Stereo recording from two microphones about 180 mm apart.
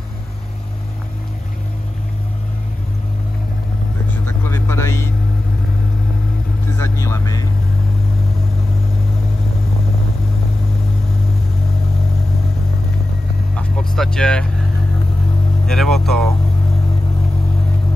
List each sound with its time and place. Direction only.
4.1 s vehicle: 15° left (ahead or behind)
6.8 s vehicle: 15° left (ahead or behind)
13.6 s vehicle: 5° left (ahead or behind)
15.6 s a sound: centre (ahead or behind)